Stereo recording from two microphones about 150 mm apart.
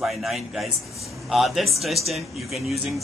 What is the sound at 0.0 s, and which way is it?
Speech, centre (ahead or behind).